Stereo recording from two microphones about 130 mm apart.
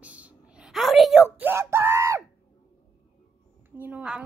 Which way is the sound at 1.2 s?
15° right (ahead or behind).